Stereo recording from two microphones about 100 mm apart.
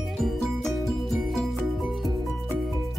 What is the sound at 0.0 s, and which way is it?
Music, centre (ahead or behind).